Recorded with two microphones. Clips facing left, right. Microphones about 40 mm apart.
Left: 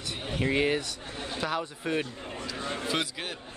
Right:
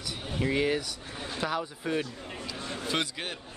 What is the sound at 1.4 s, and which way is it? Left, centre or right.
Speech, centre.